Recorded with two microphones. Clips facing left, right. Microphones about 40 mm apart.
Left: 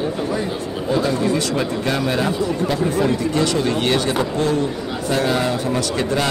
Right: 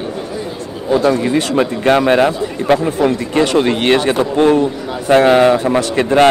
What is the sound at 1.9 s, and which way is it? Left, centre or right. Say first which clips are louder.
Speech: right 12 dB; right.